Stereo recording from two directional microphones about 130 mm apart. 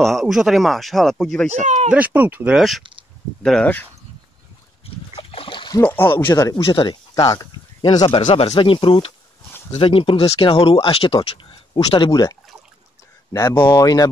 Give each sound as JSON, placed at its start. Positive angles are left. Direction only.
{"t": 0.0, "sound": "speech", "side_deg": 0}
{"t": 1.5, "sound": "speech", "side_deg": -60}
{"t": 1.9, "sound": "speech", "side_deg": -10}
{"t": 3.4, "sound": "speech", "side_deg": 10}
{"t": 5.1, "sound": "splash", "side_deg": 45}
{"t": 5.8, "sound": "speech", "side_deg": 15}
{"t": 6.2, "sound": "speech", "side_deg": 30}
{"t": 8.3, "sound": "speech", "side_deg": 55}
{"t": 8.5, "sound": "speech", "side_deg": 40}
{"t": 12.1, "sound": "speech", "side_deg": 30}